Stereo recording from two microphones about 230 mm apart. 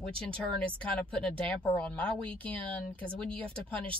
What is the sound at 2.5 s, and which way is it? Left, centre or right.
Speech, centre.